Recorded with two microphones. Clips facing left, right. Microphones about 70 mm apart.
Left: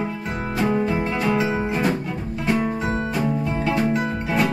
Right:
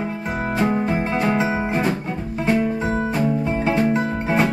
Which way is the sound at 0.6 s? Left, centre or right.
Right.